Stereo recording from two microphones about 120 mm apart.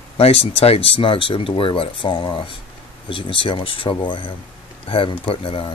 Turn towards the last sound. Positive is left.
turn(degrees=50)  # may be behind; listen again after turning